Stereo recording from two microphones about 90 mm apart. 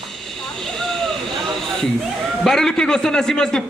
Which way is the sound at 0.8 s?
5° left (ahead or behind).